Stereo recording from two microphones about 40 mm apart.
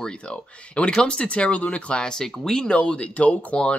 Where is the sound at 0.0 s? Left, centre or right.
Left.